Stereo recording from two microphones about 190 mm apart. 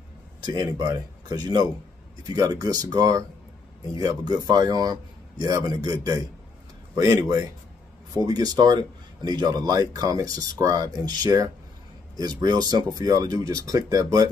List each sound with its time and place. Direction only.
0.4 s speech: 20° right (ahead or behind)
7.0 s speech: 20° right (ahead or behind)